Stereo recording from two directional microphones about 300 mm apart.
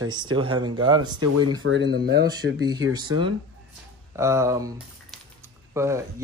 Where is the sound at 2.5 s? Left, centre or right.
Centre.